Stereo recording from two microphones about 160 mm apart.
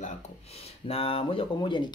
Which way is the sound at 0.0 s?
40° left (ahead or behind).